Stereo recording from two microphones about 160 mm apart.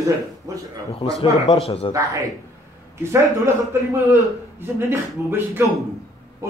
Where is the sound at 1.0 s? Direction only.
25° left (ahead or behind).